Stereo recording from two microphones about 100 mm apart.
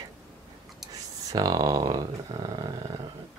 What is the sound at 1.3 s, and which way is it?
Speech, 40° right (ahead or behind).